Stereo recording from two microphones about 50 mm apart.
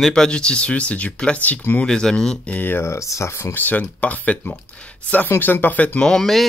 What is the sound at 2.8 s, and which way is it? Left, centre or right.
Speech, left.